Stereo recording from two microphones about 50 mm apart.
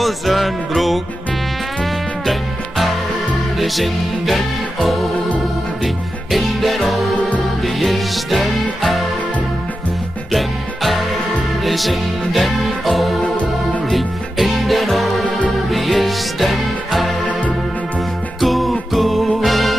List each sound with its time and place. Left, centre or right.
0.0 s music: centre
3.5 s music: centre
6.3 s music: centre
7.2 s music: left
7.6 s music: centre
10.3 s music: centre
18.4 s music: centre